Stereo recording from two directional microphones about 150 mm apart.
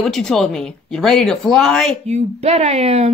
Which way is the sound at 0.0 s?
Centre (ahead or behind).